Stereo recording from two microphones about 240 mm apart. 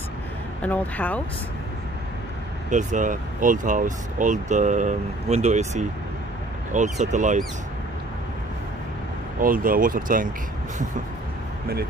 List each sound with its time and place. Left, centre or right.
0.6 s speech: centre
2.7 s speech: right
9.4 s speech: right